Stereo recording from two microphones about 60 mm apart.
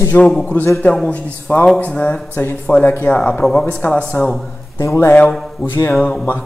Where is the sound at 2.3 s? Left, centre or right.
Left.